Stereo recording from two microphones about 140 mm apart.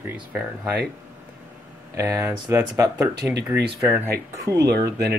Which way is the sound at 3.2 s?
10° right (ahead or behind).